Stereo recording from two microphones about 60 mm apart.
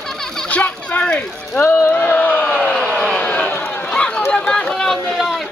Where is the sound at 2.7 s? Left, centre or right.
Centre.